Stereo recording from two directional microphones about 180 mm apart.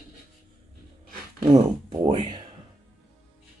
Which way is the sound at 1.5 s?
25° right (ahead or behind).